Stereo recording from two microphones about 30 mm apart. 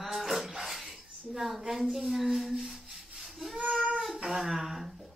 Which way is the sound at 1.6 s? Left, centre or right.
Centre.